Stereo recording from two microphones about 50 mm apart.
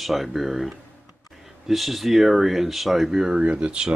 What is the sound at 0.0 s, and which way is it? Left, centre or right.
Speech, centre.